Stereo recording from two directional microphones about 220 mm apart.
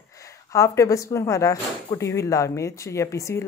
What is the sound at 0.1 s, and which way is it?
Speech, 15° left (ahead or behind).